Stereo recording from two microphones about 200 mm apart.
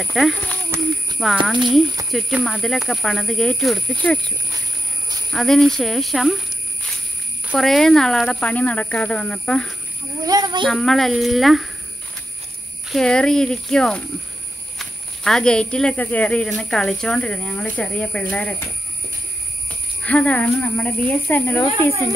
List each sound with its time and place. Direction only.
0.0 s speech: centre (ahead or behind)
2.0 s speech: centre (ahead or behind)
5.3 s speech: centre (ahead or behind)
7.4 s speech: centre (ahead or behind)
10.2 s a child's voice: 20° right (ahead or behind)
10.7 s speech: centre (ahead or behind)
12.8 s speech: centre (ahead or behind)
20.0 s speech: 5° left (ahead or behind)